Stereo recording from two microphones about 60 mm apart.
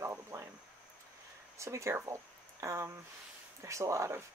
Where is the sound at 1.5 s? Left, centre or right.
Right.